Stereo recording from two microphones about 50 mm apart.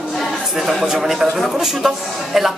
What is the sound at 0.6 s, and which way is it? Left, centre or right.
Speech, centre.